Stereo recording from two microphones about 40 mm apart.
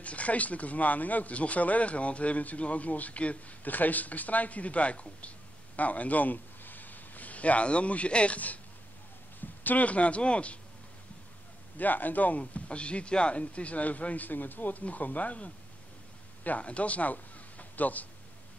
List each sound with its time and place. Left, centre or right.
0.0 s speech: left
3.6 s a man's voice: left
9.6 s speech: left
11.7 s a man's voice: left